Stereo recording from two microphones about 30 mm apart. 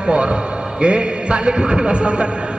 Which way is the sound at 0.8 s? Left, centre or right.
Right.